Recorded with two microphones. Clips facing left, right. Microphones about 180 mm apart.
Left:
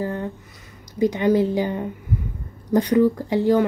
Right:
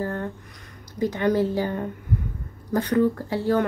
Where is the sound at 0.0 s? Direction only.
15° left (ahead or behind).